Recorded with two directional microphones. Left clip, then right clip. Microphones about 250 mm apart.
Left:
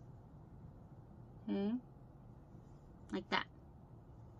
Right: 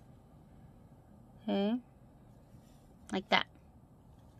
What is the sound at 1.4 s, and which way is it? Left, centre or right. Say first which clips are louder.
Speech: right 7 dB; right.